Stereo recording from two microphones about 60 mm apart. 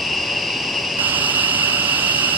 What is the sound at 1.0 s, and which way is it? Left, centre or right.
Vehicle, right.